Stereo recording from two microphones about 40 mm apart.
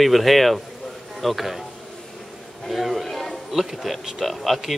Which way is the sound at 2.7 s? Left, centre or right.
Centre.